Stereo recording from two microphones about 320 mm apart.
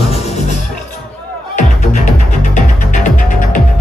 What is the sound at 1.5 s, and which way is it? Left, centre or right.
Music, left.